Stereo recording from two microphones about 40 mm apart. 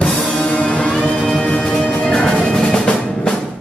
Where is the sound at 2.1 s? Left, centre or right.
Centre.